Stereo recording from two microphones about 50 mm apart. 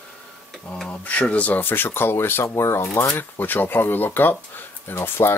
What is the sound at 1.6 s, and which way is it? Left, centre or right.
Speech, left.